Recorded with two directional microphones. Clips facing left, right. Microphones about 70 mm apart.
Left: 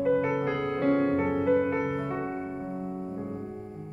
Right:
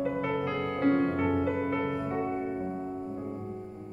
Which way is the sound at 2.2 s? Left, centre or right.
Left.